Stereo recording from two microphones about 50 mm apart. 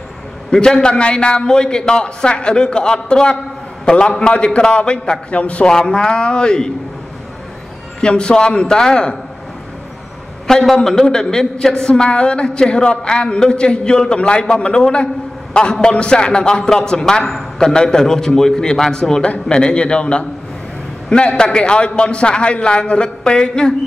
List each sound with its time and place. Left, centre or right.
0.5 s a woman's voice: centre
5.7 s a woman's voice: centre
8.0 s a woman's voice: centre
10.6 s a woman's voice: centre